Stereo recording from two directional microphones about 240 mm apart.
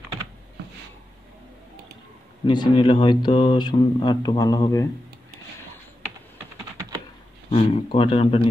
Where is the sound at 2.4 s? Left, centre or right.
Centre.